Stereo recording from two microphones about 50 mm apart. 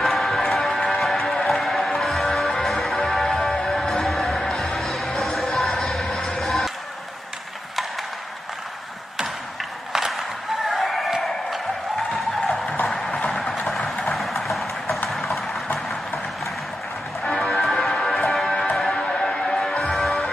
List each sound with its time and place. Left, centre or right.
0.0 s music: centre
4.7 s music: centre
9.9 s skateboard: centre
10.7 s a sound: centre
12.8 s a sound: centre
14.1 s clip-clop: centre
15.0 s vehicle: centre
17.2 s music: centre